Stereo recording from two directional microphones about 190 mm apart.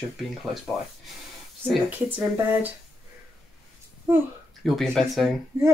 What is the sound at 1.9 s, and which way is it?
Speech, 5° right (ahead or behind).